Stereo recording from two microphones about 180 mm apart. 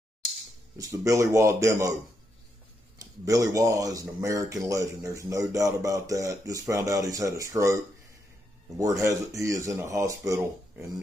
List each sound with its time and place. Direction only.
0.7 s speech: 20° right (ahead or behind)
3.0 s speech: 20° right (ahead or behind)